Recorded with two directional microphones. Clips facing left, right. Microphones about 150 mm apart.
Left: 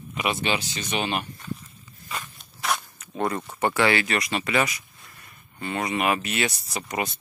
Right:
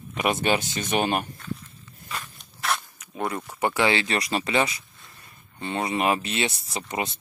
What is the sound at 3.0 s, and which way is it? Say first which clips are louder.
Speech: left 2 dB; 5° right (ahead or behind).